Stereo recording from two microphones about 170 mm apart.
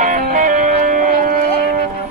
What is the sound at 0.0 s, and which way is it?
Music, 50° right (ahead or behind).